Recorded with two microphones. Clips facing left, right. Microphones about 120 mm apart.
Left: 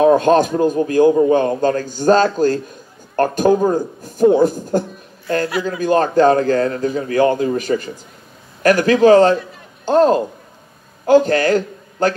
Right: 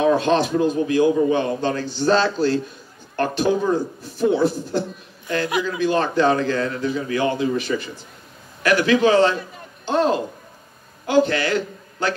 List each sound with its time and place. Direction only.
0.0 s a man's voice: 45° left (ahead or behind)